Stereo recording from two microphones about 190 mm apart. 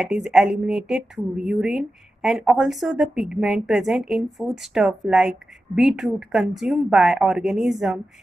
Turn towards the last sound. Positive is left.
turn(degrees=0)  # may be behind; listen again after turning